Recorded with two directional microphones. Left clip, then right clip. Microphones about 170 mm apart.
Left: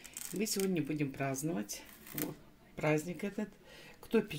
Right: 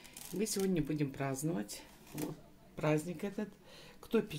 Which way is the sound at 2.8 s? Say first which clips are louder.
Left 1 dB; 10° left (ahead or behind).